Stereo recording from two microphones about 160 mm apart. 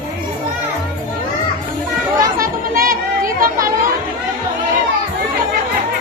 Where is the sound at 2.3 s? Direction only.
65° right (ahead or behind).